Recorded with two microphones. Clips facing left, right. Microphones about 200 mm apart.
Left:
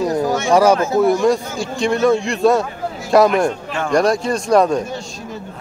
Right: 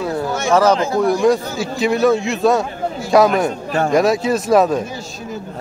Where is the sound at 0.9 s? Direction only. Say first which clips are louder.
Even; centre (ahead or behind).